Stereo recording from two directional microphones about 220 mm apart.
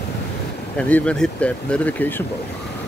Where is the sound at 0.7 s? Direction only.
5° left (ahead or behind).